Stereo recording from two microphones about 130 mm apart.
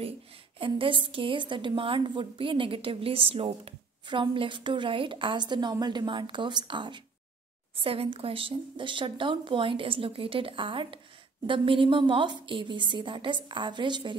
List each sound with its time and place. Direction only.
0.6 s a woman's voice: 40° right (ahead or behind)